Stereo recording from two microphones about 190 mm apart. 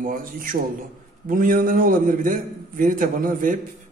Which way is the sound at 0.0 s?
45° right (ahead or behind).